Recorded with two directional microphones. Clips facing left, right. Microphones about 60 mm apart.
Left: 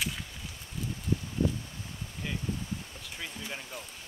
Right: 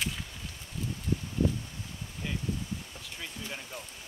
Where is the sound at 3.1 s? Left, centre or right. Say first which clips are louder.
Left 1 dB; centre.